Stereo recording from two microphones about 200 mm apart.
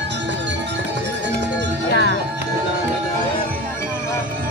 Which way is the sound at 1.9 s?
60° left (ahead or behind).